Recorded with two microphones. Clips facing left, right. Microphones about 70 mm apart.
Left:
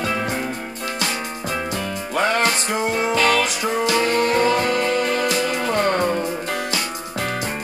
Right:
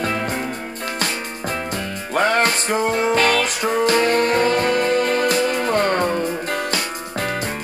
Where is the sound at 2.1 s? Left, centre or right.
Right.